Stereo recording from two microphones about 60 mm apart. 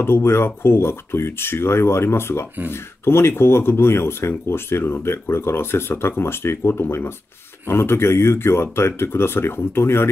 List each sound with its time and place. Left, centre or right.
0.0 s speech: left